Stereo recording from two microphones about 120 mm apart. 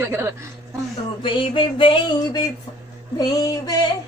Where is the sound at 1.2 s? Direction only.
45° left (ahead or behind).